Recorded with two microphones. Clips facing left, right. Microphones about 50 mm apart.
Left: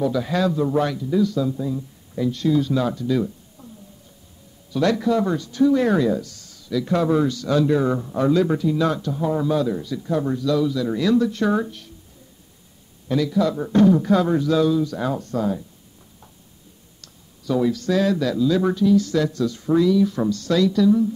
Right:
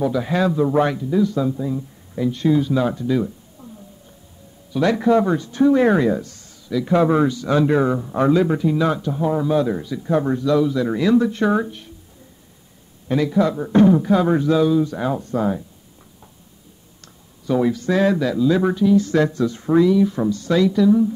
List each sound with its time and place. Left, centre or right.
0.0 s speech: centre
4.7 s speech: centre
6.7 s speech: centre
9.6 s speech: right
9.8 s speech: centre
10.1 s speech: right
13.1 s speech: right
14.3 s speech: right
15.3 s speech: right
17.0 s speech: right
19.0 s speech: right